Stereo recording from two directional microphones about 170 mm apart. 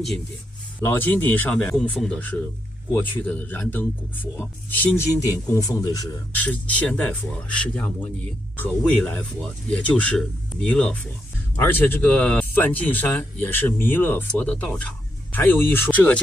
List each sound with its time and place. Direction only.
0.7 s speech: 10° left (ahead or behind)
6.3 s speech: 10° left (ahead or behind)